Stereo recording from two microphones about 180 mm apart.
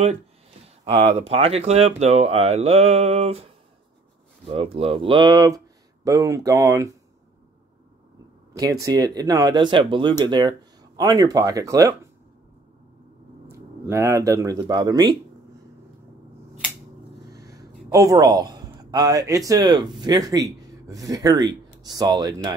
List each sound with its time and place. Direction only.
0.9 s speech: 35° right (ahead or behind)
4.5 s speech: 35° right (ahead or behind); by 6.9 s 15° right (ahead or behind)
8.5 s speech: 20° right (ahead or behind)
13.5 s speech: 15° right (ahead or behind)
17.3 s a man's voice: 20° right (ahead or behind)